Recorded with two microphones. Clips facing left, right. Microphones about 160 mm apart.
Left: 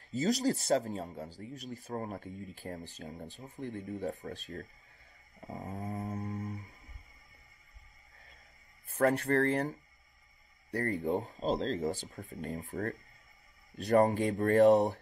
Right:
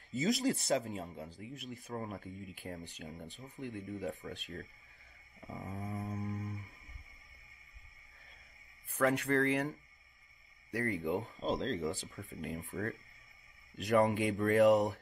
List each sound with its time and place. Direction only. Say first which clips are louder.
0.2 s speech: left 2 dB; 40° left (ahead or behind)
8.9 s speech: left 3 dB; 35° left (ahead or behind)